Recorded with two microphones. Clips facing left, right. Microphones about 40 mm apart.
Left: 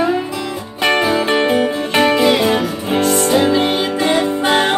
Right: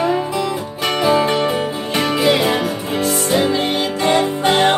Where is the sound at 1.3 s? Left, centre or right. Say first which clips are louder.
Left 3 dB; left.